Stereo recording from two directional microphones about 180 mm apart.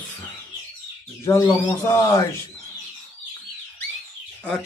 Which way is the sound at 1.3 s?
15° left (ahead or behind).